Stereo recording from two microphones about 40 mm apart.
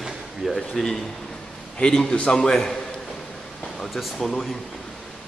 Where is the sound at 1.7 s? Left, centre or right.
Centre.